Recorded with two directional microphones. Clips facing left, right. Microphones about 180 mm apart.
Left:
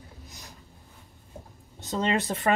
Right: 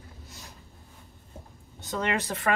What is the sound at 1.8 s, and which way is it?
Speech, 20° left (ahead or behind).